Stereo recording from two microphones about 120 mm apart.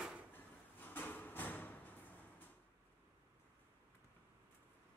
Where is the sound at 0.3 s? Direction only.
15° left (ahead or behind).